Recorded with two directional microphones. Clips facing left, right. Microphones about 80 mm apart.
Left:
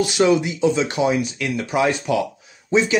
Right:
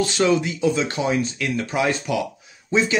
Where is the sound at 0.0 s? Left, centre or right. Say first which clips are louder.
Left 2 dB; centre.